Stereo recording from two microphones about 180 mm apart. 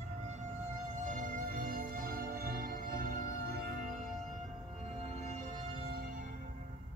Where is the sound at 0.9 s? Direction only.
45° right (ahead or behind).